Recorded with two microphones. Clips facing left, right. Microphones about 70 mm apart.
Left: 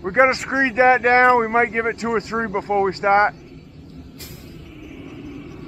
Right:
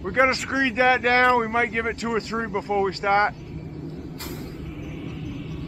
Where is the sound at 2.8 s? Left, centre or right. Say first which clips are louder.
Left 5 dB; left.